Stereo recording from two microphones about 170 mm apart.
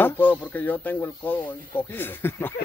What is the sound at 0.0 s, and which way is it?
Speech, 10° left (ahead or behind).